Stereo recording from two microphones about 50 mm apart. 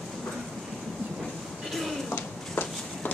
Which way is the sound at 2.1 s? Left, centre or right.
Left.